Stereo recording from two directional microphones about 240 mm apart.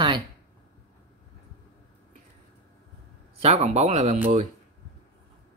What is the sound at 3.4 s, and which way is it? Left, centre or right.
Speech, right.